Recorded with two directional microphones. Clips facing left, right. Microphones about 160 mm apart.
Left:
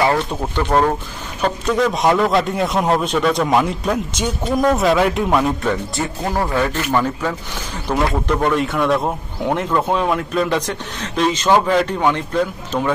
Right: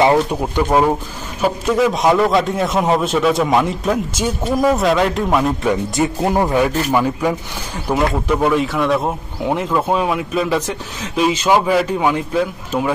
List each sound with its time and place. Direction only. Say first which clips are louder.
0.0 s speech: right 4 dB; 15° right (ahead or behind); by 5.5 s centre (ahead or behind)
5.7 s speech: right 4 dB; 20° right (ahead or behind)